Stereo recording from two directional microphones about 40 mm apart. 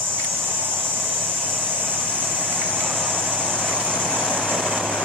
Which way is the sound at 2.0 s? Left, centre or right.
Left.